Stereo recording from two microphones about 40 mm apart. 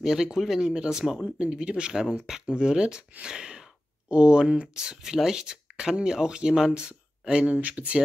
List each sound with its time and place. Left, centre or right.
0.0 s speech: centre
7.4 s speech: right